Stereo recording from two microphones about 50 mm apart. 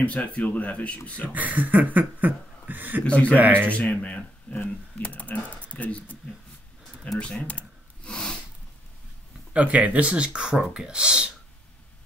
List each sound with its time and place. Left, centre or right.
0.0 s speech: left
1.3 s chuckle: right
3.0 s speech: left
3.6 s a sound: left
7.1 s typing: left
7.4 s gasp: left
9.5 s speech: right
10.5 s speech: centre